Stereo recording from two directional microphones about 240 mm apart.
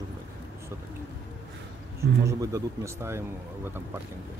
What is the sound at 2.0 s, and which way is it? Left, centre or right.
Speech, centre.